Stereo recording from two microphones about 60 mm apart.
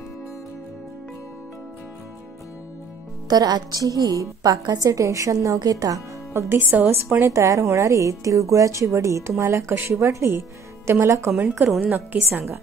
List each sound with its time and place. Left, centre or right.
3.3 s a woman's voice: right
6.3 s a woman's voice: right
7.2 s speech: right
12.1 s a woman's voice: right